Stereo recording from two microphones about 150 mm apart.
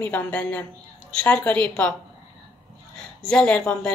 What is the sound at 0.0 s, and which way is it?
A woman's voice, 10° left (ahead or behind).